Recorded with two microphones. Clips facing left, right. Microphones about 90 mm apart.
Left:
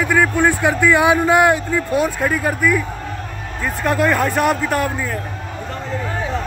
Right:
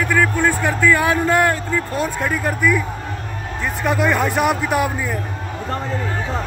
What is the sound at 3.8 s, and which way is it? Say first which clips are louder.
Speech: left 1 dB; centre (ahead or behind).